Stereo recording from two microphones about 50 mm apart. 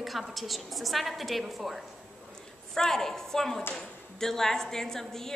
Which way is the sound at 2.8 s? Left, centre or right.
Centre.